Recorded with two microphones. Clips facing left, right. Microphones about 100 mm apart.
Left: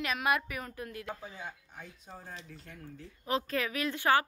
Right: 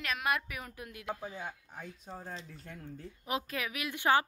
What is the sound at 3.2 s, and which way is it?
A woman's voice, 10° right (ahead or behind).